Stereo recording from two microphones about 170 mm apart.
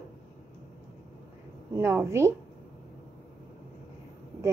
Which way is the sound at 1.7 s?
15° right (ahead or behind).